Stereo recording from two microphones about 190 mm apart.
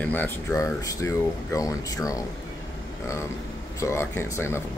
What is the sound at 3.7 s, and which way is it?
Speech, 15° left (ahead or behind).